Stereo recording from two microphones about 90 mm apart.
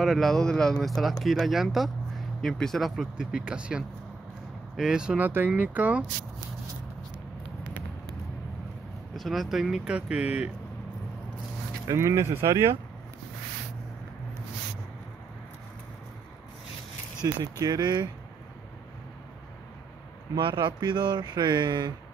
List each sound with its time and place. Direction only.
0.0 s speech: centre (ahead or behind); by 6.0 s 15° right (ahead or behind)
9.1 s speech: centre (ahead or behind)
9.9 s speech: 15° right (ahead or behind)
11.9 s speech: 35° right (ahead or behind)
17.2 s speech: 45° right (ahead or behind)
20.3 s speech: 60° right (ahead or behind)